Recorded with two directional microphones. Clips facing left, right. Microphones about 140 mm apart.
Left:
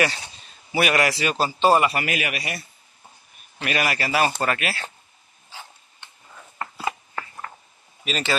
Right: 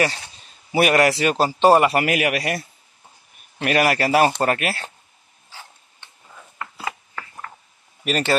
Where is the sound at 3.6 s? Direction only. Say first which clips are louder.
Right 6 dB; 55° right (ahead or behind).